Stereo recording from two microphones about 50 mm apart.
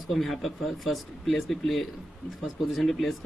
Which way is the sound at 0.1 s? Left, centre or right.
Centre.